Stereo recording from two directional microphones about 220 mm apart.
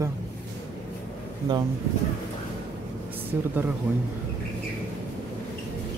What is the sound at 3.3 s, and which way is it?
Speech, 5° right (ahead or behind).